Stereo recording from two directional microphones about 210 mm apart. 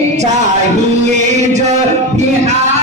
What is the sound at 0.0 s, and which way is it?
Music, 35° right (ahead or behind).